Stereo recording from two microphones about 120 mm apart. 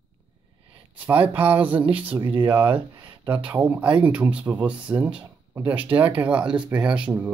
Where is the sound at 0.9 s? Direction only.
15° right (ahead or behind).